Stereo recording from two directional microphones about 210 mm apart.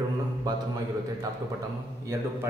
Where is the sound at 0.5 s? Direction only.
20° right (ahead or behind).